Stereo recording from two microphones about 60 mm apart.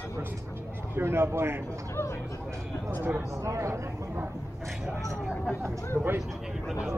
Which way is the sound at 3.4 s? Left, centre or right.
Right.